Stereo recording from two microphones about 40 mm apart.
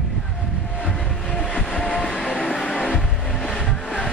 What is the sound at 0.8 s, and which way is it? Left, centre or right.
Train, left.